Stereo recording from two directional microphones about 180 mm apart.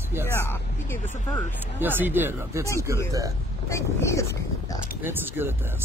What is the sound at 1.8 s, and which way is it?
Speech, 10° right (ahead or behind).